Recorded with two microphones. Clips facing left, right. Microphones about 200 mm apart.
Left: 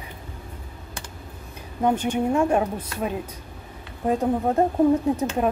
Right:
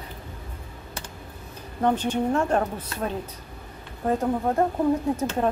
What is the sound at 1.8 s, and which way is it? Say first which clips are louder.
Speech: left 1 dB; 10° left (ahead or behind).